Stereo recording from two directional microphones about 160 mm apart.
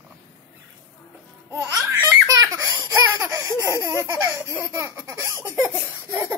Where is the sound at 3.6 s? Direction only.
15° right (ahead or behind).